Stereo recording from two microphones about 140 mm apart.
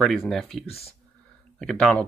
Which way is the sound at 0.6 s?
45° left (ahead or behind).